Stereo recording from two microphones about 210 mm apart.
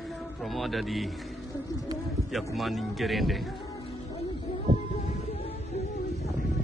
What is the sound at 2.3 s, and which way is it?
Speech, centre (ahead or behind).